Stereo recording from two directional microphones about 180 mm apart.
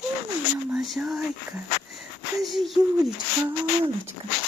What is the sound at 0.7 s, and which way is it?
Speech, centre (ahead or behind).